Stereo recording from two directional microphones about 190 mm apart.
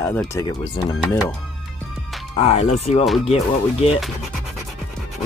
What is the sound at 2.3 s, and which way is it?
Speech, 35° left (ahead or behind).